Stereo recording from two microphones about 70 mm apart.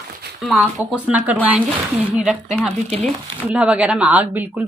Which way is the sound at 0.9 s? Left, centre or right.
Centre.